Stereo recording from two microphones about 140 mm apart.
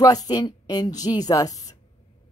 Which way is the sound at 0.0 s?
25° left (ahead or behind).